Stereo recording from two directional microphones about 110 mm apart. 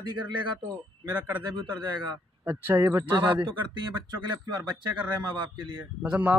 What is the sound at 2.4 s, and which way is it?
Speech, 20° right (ahead or behind).